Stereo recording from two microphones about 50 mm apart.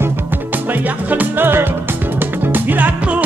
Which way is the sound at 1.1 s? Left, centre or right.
Right.